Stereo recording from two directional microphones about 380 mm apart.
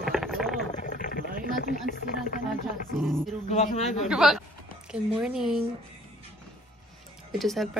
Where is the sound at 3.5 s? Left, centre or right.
Centre.